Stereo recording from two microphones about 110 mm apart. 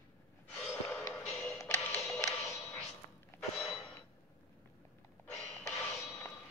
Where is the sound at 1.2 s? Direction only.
5° left (ahead or behind).